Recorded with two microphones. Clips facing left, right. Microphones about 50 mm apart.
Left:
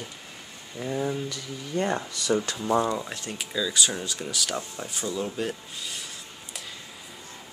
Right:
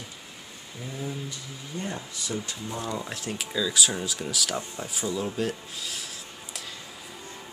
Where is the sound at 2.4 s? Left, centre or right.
Left.